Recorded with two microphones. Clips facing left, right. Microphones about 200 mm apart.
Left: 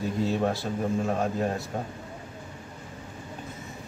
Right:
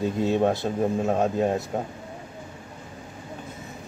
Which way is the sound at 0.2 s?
20° right (ahead or behind).